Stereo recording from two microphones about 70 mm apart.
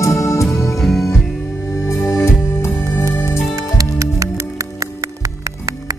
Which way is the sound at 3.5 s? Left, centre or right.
Right.